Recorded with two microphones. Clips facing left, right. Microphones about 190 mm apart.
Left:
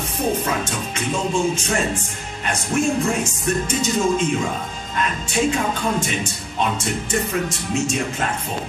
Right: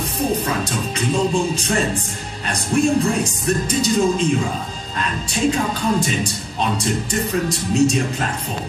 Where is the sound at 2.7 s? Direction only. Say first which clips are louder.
Right 3 dB; 35° right (ahead or behind).